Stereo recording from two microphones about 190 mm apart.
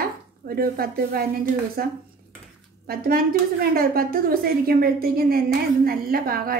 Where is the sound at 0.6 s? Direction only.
50° right (ahead or behind).